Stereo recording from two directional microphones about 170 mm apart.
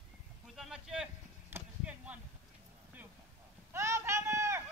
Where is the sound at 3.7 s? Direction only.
15° right (ahead or behind).